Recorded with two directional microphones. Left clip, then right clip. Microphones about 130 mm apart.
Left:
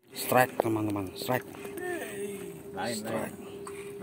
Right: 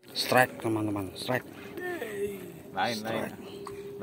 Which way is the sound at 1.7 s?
30° left (ahead or behind).